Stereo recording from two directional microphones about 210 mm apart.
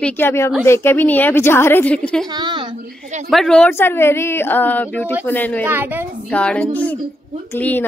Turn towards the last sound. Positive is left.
turn(degrees=10)  # may be behind; listen again after turning